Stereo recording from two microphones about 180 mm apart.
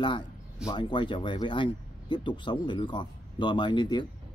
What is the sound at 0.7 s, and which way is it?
Speech, 25° left (ahead or behind).